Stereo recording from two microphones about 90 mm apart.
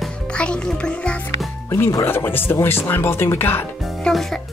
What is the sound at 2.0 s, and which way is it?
Speech, 25° left (ahead or behind).